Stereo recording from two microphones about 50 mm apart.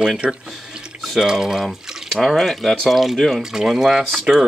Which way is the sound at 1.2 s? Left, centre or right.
Centre.